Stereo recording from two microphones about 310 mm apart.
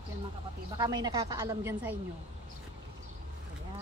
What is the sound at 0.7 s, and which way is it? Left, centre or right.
A woman's voice, centre.